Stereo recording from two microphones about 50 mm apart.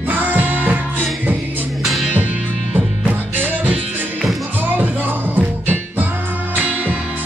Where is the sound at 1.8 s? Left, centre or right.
Centre.